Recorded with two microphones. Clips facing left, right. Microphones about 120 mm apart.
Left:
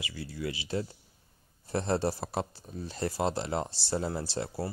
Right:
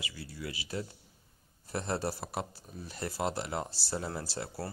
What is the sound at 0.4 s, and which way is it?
Speech, 25° left (ahead or behind).